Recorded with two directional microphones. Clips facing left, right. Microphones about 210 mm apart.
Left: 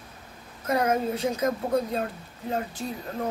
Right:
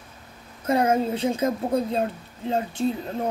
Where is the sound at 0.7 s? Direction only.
25° right (ahead or behind).